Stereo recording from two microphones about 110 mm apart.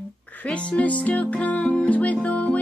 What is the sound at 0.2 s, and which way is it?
Music, 15° left (ahead or behind).